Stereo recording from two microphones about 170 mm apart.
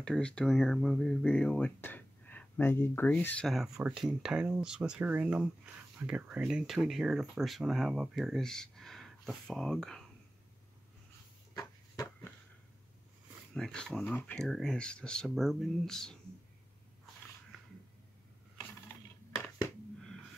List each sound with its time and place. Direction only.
0.0 s speech: 5° left (ahead or behind)
11.5 s a sound: 15° left (ahead or behind)
13.6 s speech: 5° left (ahead or behind)